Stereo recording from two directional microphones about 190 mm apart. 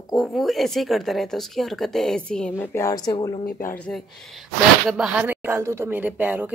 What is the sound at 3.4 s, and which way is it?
Speech, 45° left (ahead or behind).